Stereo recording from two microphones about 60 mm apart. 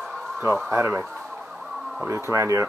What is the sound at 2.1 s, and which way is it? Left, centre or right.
Speech, right.